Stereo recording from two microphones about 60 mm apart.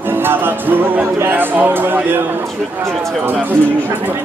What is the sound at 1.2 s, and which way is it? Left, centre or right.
Speech, right.